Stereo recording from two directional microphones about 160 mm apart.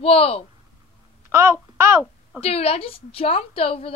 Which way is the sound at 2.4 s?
40° left (ahead or behind).